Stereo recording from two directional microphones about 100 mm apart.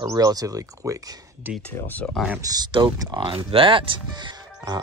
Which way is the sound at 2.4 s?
40° right (ahead or behind).